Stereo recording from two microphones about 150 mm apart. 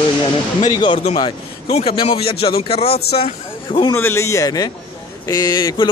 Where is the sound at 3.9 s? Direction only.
15° left (ahead or behind).